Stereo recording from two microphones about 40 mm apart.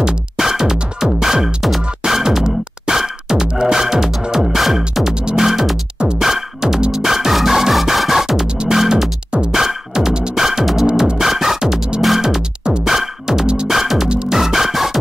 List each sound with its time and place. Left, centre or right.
0.0 s music: centre
5.1 s music: right
5.4 s music: centre
12.8 s music: centre
14.0 s music: right
14.3 s music: centre